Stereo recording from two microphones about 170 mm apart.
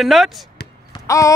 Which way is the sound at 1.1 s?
20° left (ahead or behind).